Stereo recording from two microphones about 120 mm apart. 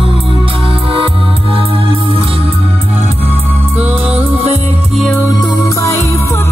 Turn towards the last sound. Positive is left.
turn(degrees=25)  # may be behind; listen again after turning